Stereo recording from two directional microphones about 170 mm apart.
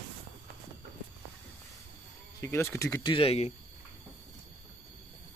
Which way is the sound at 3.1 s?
35° left (ahead or behind).